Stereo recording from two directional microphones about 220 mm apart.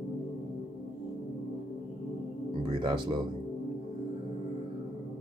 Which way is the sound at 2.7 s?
20° right (ahead or behind).